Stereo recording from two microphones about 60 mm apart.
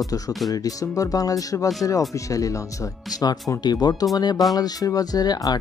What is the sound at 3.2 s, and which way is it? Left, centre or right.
Speech, left.